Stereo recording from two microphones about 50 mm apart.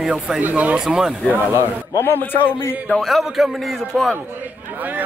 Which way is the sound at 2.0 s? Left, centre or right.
Left.